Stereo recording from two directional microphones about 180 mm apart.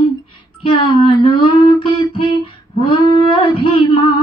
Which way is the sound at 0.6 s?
25° left (ahead or behind).